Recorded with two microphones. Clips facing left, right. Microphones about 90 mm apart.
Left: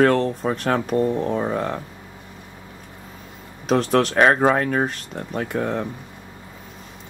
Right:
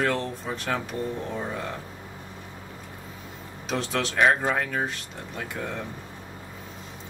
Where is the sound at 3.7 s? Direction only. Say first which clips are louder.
Left 10 dB; 55° left (ahead or behind).